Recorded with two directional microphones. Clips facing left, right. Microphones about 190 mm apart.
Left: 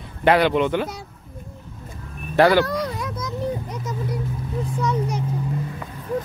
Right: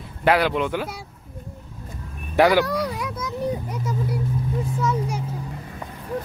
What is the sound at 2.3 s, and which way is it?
Speech, 10° right (ahead or behind).